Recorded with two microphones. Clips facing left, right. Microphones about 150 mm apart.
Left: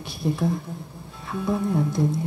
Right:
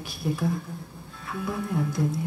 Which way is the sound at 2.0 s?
25° left (ahead or behind).